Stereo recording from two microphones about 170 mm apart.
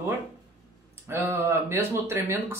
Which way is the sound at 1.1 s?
15° right (ahead or behind).